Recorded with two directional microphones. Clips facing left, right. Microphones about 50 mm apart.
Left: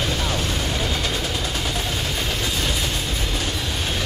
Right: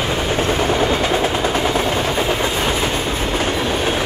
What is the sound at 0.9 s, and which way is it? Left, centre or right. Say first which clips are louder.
Train: right 8 dB; right.